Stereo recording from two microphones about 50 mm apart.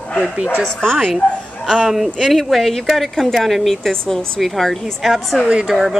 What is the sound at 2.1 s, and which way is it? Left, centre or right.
Speech, centre.